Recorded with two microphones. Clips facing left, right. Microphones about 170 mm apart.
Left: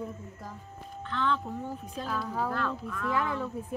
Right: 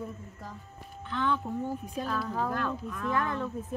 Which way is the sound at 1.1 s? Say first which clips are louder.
Right 1 dB; 15° right (ahead or behind).